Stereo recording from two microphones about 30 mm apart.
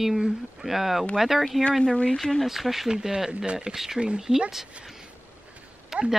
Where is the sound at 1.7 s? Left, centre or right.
Left.